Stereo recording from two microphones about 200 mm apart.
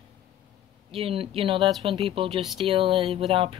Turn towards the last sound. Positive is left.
turn(degrees=-25)  # may be behind; listen again after turning